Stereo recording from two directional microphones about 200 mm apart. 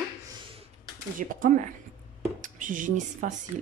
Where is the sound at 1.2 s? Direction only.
40° right (ahead or behind).